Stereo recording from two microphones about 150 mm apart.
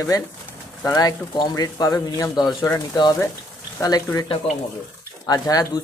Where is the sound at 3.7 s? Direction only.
20° left (ahead or behind).